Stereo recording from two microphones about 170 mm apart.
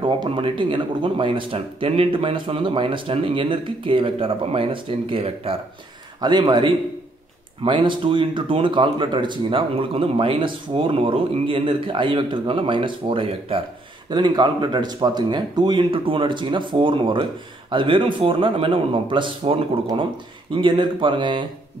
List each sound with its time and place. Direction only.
0.0 s speech: 30° right (ahead or behind)